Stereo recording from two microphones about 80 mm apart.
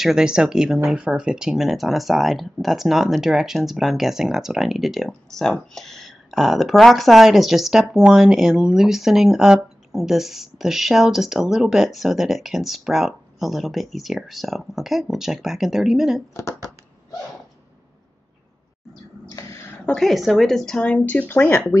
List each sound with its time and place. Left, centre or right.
0.0 s speech: centre
19.2 s a sound: left
20.0 s speech: centre; by 21.7 s left